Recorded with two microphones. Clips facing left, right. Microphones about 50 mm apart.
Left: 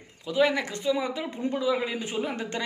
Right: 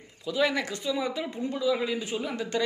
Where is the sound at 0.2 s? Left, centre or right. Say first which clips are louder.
Left 2 dB; left.